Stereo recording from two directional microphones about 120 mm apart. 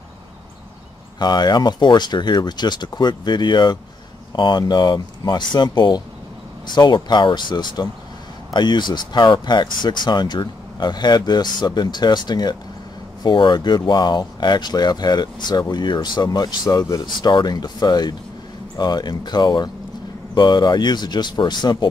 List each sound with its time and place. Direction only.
1.2 s speech: 35° left (ahead or behind)